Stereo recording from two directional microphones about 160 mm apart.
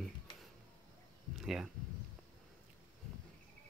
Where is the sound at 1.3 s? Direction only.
Centre (ahead or behind).